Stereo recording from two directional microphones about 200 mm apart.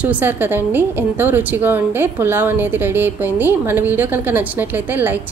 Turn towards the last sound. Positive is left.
turn(degrees=-10)  # may be behind; listen again after turning